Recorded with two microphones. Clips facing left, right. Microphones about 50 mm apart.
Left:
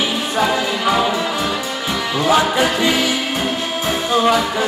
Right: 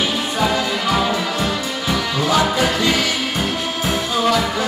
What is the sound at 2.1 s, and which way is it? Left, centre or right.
Music, left.